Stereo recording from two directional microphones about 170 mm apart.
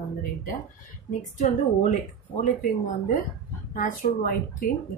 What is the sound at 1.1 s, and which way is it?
Speech, 45° left (ahead or behind).